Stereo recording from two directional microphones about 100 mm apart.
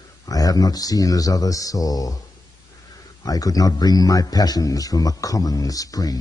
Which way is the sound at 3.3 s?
35° left (ahead or behind).